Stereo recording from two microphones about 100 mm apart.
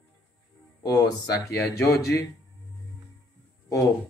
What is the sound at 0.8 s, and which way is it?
Speech, 40° left (ahead or behind).